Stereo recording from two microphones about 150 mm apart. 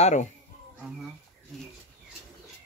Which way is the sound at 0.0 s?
50° left (ahead or behind).